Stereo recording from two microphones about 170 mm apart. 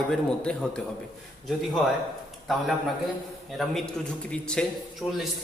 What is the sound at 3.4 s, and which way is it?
A man's voice, centre (ahead or behind).